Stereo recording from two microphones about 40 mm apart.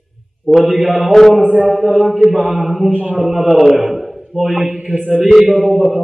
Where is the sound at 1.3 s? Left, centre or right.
Right.